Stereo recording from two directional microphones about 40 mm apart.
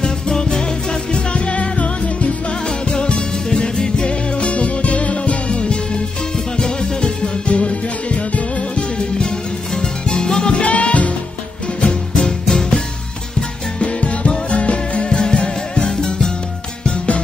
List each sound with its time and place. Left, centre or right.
0.0 s music: centre
7.5 s music: left
9.8 s music: centre
10.5 s music: left
11.8 s music: left
12.3 s music: centre
13.7 s music: left